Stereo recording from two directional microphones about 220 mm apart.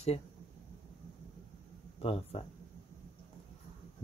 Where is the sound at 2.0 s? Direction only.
25° left (ahead or behind).